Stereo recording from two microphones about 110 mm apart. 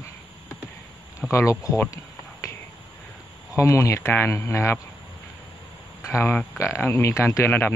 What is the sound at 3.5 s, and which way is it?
Speech, 30° left (ahead or behind).